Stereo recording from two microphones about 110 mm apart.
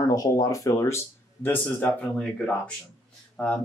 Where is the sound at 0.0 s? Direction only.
35° left (ahead or behind).